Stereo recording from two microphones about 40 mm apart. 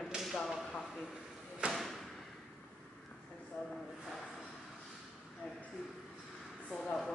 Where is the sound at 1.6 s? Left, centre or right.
Right.